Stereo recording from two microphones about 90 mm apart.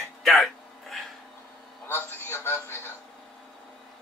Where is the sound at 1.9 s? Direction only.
25° left (ahead or behind).